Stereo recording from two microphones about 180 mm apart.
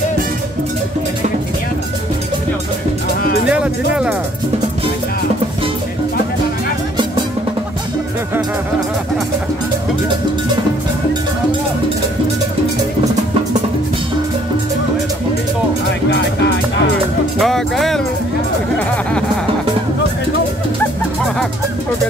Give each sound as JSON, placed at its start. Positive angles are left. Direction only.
{"t": 3.4, "sound": "music", "side_deg": -5}
{"t": 16.1, "sound": "music", "side_deg": 75}
{"t": 17.4, "sound": "speech", "side_deg": 0}